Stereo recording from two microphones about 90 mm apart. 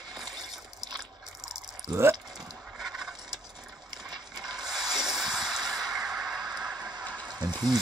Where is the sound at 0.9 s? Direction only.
5° right (ahead or behind).